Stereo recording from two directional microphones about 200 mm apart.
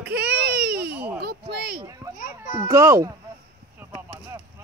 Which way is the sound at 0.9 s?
10° right (ahead or behind).